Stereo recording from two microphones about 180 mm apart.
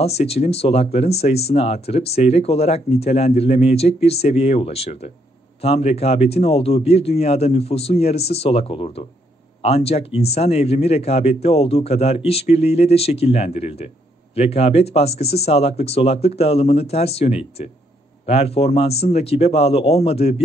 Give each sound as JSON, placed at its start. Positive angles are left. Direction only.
{"t": 0.0, "sound": "speech", "side_deg": 35}